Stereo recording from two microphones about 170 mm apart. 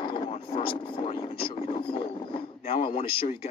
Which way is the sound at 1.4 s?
35° left (ahead or behind).